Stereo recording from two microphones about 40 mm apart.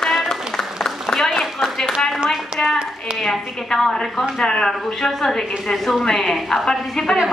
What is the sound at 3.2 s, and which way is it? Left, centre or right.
A woman's voice, centre.